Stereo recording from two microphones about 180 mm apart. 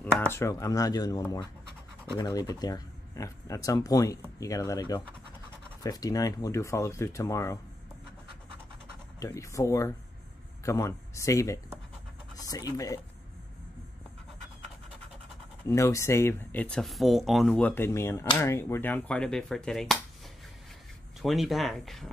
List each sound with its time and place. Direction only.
0.3 s speech: 15° left (ahead or behind)
9.2 s speech: 15° left (ahead or behind)
15.7 s speech: 15° left (ahead or behind)
21.2 s speech: centre (ahead or behind)